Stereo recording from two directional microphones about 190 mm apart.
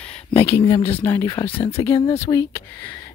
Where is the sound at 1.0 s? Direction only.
15° left (ahead or behind).